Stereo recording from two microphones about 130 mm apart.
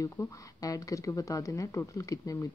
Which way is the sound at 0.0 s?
25° left (ahead or behind).